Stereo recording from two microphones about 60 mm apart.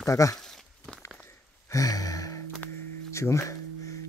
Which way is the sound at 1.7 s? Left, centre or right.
Left.